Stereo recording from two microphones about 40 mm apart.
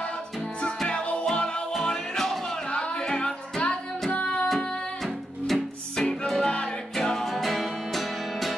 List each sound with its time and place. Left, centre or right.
0.8 s music: left
1.7 s music: centre
2.5 s music: left
4.1 s music: left
4.5 s music: centre
6.4 s music: left
7.0 s music: centre